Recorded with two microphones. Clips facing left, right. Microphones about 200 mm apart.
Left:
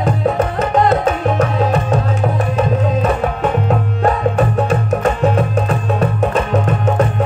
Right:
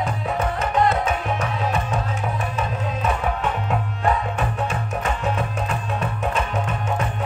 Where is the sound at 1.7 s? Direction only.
35° left (ahead or behind).